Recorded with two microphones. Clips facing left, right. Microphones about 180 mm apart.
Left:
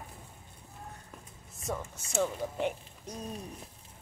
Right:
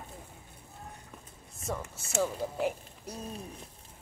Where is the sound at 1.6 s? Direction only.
Centre (ahead or behind).